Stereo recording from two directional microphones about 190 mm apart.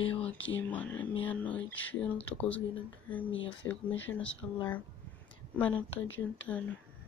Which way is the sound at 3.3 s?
85° left.